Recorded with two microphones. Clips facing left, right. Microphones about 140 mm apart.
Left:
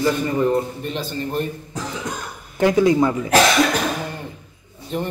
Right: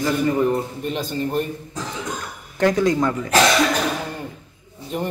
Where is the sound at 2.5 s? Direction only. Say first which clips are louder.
Left 3 dB; 10° left (ahead or behind).